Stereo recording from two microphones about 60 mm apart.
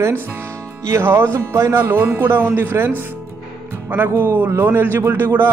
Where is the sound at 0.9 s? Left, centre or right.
Right.